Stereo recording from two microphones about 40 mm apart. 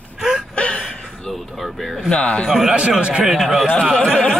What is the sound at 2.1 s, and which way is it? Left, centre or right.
Speech, left.